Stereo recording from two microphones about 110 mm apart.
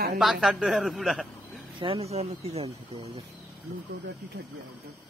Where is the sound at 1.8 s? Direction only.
65° right (ahead or behind).